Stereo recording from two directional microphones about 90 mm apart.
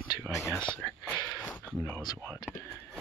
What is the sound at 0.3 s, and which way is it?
Speech, 30° left (ahead or behind).